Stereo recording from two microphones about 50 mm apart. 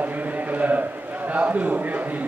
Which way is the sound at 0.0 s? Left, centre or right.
Right.